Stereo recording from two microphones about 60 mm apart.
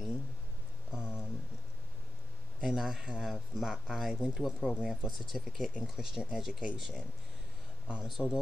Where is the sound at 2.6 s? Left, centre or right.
Centre.